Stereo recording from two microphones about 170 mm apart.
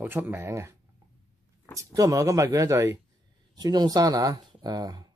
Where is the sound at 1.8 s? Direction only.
20° right (ahead or behind).